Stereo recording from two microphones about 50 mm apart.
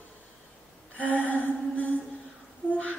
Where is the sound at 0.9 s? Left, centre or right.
Left.